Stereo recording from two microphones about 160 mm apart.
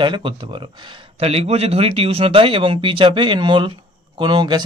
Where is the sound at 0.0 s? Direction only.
30° right (ahead or behind).